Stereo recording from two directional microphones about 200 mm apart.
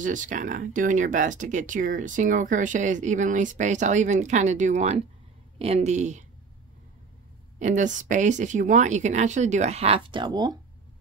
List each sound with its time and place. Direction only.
0.0 s speech: 40° right (ahead or behind)
7.5 s speech: 35° right (ahead or behind); by 10.6 s 20° right (ahead or behind)